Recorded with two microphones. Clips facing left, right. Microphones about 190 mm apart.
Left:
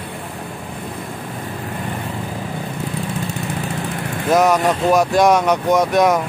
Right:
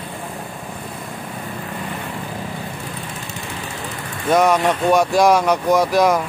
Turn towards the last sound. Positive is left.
turn(degrees=0)  # may be behind; listen again after turning